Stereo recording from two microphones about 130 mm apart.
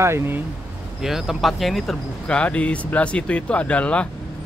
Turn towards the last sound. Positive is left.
turn(degrees=10)  # may be behind; listen again after turning